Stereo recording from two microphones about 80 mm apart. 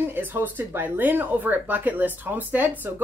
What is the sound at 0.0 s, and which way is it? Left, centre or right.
Speech, right.